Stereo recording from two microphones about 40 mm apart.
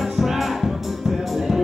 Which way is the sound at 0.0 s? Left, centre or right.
Centre.